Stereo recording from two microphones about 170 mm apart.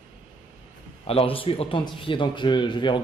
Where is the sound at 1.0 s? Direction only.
35° left (ahead or behind).